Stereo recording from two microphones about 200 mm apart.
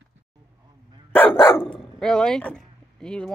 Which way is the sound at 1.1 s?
10° left (ahead or behind).